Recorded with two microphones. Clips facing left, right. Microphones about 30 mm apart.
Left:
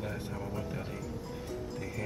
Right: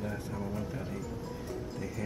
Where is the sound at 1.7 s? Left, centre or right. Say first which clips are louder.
Even; left.